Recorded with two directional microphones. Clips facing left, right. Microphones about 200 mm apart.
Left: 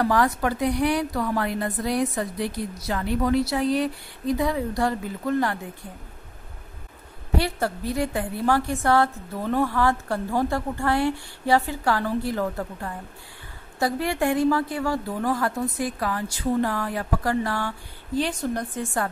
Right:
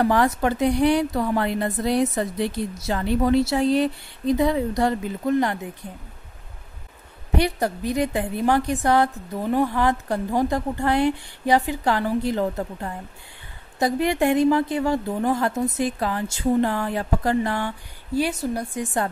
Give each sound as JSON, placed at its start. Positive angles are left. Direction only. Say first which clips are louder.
{"t": 0.0, "sound": "a woman's voice", "louder": "right 2 dB", "side_deg": -25}
{"t": 7.3, "sound": "a woman's voice", "louder": "right 3 dB", "side_deg": -20}
{"t": 18.1, "sound": "a woman's voice", "louder": "right 2 dB", "side_deg": -10}